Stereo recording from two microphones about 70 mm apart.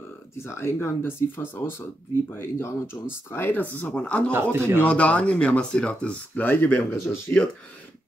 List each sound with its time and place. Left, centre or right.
0.4 s speech: left
3.8 s speech: centre
4.3 s a man's voice: right
4.8 s speech: centre